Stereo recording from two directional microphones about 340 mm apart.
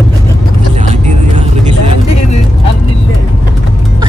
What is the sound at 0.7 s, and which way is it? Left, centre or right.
Vehicle, centre.